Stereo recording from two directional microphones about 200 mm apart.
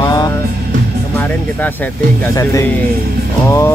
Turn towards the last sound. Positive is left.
turn(degrees=15)  # may be behind; listen again after turning